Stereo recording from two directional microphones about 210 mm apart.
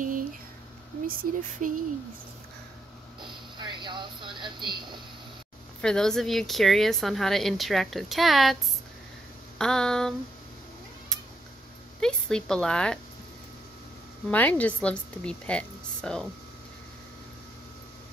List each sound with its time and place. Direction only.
1.0 s speech: 40° right (ahead or behind)
3.5 s speech: 20° right (ahead or behind)
5.8 s speech: 5° left (ahead or behind)
9.6 s speech: 5° left (ahead or behind)
12.0 s speech: 5° left (ahead or behind)
14.3 s speech: 10° left (ahead or behind)